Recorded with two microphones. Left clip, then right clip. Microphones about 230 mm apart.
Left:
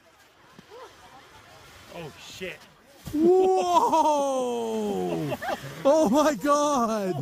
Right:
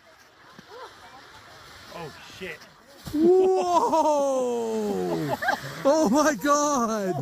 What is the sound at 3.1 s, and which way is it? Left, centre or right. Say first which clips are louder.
Speech: right 1 dB; centre.